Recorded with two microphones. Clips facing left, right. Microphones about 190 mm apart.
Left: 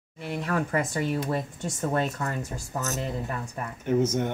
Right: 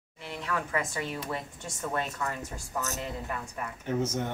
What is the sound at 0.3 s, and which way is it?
A woman's voice, 45° left (ahead or behind).